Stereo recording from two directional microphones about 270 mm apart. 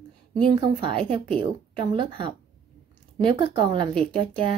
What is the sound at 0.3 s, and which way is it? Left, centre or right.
A woman's voice, centre.